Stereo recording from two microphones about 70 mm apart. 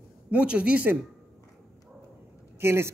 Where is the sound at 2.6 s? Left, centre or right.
Right.